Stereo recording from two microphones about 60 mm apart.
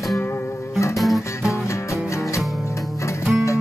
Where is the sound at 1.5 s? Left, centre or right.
Left.